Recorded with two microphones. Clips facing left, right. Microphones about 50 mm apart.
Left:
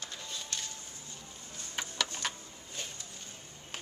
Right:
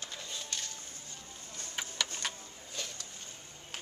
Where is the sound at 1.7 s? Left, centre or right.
Centre.